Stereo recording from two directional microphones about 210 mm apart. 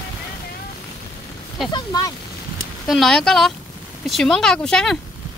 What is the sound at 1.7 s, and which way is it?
Speech, 20° left (ahead or behind).